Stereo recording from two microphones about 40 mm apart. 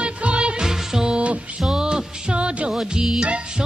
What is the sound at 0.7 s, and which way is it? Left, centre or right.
Music, centre.